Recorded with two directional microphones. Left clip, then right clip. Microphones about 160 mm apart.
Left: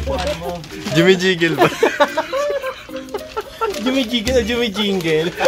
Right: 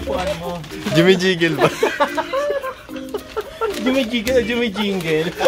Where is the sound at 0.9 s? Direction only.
Centre (ahead or behind).